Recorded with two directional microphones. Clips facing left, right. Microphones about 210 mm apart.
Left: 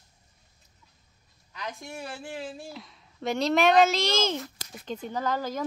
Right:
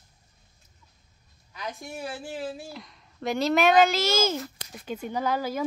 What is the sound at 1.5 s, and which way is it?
Speech, 5° right (ahead or behind).